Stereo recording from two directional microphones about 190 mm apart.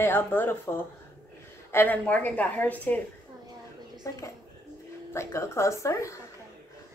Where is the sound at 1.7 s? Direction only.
10° left (ahead or behind).